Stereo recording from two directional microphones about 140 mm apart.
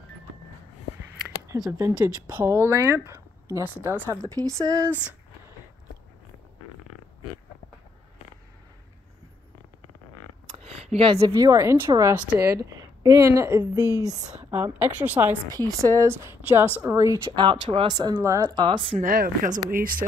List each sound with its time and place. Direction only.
1.7 s speech: 20° right (ahead or behind)
10.9 s speech: 40° right (ahead or behind)
11.1 s speech: 25° right (ahead or behind)
14.4 s a woman's voice: 10° right (ahead or behind)
15.4 s speech: 25° right (ahead or behind)
17.4 s speech: 35° right (ahead or behind)
18.9 s speech: 90° right